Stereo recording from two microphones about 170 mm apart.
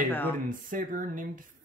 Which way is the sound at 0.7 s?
50° right (ahead or behind).